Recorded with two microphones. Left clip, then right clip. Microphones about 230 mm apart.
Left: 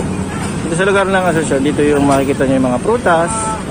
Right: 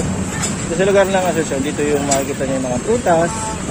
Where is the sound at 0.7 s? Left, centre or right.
Centre.